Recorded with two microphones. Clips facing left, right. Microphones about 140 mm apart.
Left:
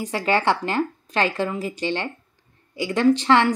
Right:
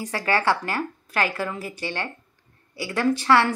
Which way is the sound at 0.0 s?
20° left (ahead or behind).